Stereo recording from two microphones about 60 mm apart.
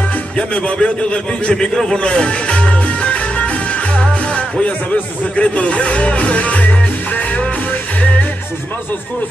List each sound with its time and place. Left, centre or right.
0.4 s a man's voice: centre